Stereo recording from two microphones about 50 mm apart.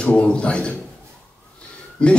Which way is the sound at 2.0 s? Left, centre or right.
Centre.